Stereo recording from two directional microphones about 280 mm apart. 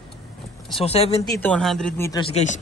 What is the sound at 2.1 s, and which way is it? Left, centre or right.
Speech, centre.